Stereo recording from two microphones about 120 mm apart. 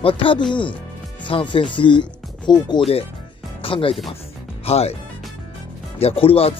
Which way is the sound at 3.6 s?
50° left (ahead or behind).